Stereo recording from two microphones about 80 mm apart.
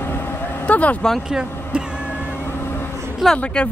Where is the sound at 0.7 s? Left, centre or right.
Centre.